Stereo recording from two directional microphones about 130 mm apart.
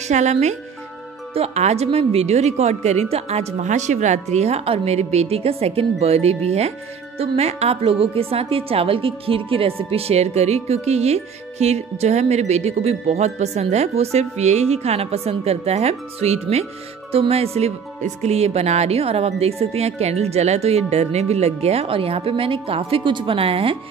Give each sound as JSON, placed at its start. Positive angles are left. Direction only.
{"t": 0.1, "sound": "a woman's voice", "side_deg": -60}